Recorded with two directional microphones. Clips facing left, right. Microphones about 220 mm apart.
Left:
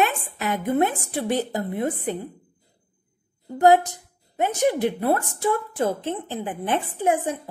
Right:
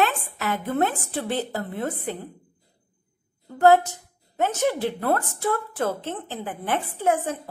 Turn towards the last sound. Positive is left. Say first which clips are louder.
# left 1 dB
turn(degrees=15)  # may be behind; listen again after turning